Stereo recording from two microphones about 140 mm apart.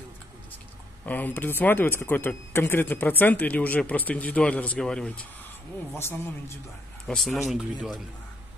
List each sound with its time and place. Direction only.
1.0 s speech: 10° left (ahead or behind)
5.9 s speech: 15° left (ahead or behind)
7.1 s speech: centre (ahead or behind)